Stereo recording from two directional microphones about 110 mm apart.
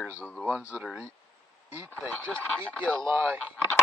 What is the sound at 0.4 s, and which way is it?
Speech, 5° right (ahead or behind).